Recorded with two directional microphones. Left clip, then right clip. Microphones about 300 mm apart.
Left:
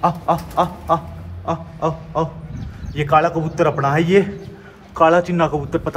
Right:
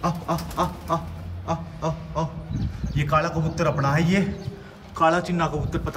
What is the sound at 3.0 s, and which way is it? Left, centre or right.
A man's voice, centre.